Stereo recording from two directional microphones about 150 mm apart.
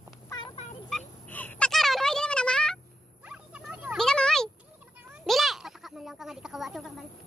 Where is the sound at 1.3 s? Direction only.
10° left (ahead or behind).